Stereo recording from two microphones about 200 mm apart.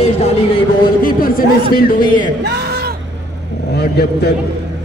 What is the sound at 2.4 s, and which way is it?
Speech, 55° right (ahead or behind).